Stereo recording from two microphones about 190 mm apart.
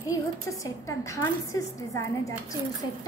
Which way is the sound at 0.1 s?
15° left (ahead or behind).